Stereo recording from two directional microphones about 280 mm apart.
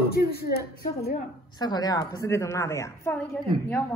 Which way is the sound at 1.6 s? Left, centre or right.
Centre.